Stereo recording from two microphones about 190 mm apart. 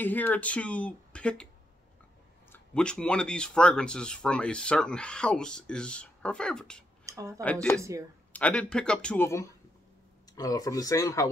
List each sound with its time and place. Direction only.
0.0 s speech: 10° left (ahead or behind)
2.5 s speech: 5° left (ahead or behind)
7.1 s a sound: 15° right (ahead or behind)
8.3 s speech: 5° left (ahead or behind)